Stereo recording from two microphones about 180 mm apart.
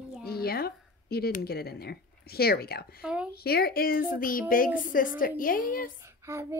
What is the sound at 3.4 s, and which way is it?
A child's voice, 60° left (ahead or behind).